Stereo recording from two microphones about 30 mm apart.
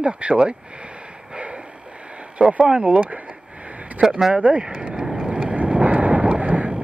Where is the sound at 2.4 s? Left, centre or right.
Right.